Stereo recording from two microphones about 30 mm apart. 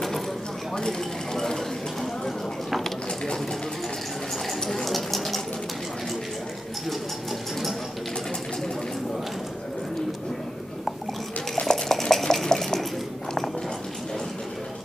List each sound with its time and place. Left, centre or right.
0.7 s speech: centre
2.0 s a sound: centre
4.6 s water: centre
4.8 s water: centre
11.6 s stir: centre
12.4 s dishes: centre